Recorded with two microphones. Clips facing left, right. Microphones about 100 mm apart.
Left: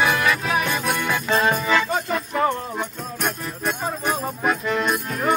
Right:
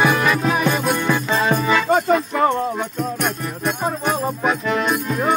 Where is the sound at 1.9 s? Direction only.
40° right (ahead or behind).